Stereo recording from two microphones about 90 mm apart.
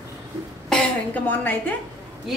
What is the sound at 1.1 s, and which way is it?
Speech, 20° left (ahead or behind).